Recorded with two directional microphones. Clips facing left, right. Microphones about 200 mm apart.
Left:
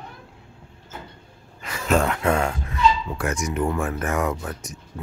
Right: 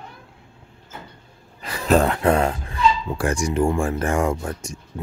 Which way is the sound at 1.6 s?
35° right (ahead or behind).